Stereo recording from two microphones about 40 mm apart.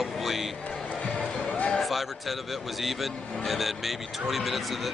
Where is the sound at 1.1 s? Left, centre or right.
Left.